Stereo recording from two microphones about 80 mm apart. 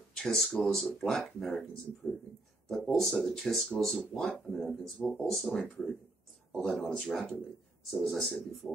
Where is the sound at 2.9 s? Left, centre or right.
Centre.